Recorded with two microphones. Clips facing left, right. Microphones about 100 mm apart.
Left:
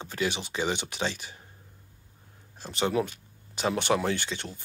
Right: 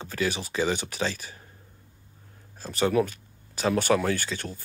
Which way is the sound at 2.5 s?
25° left (ahead or behind).